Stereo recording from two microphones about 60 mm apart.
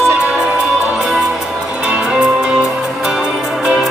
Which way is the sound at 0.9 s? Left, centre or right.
Centre.